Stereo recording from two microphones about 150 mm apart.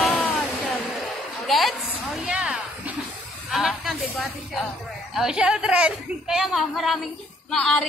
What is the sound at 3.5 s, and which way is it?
Music, centre (ahead or behind).